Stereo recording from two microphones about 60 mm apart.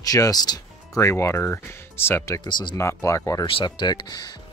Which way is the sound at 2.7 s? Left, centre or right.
Left.